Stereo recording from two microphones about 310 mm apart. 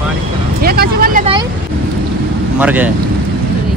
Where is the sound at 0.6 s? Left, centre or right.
Right.